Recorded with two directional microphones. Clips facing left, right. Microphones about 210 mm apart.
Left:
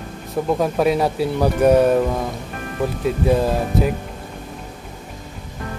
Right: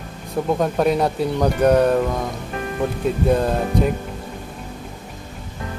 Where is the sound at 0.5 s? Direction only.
Centre (ahead or behind).